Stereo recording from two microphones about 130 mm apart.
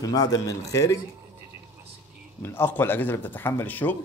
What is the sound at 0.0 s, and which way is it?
Speech, 30° left (ahead or behind).